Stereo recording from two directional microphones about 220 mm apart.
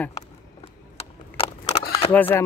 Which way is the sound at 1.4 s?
25° left (ahead or behind).